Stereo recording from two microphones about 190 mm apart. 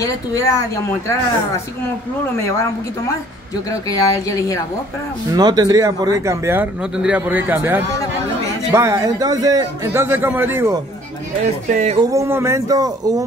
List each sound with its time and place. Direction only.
0.0 s speech: 15° left (ahead or behind)
3.7 s speech: 20° left (ahead or behind)
5.3 s speech: 20° right (ahead or behind)
11.7 s speech: 35° right (ahead or behind)
12.0 s speech: 15° right (ahead or behind)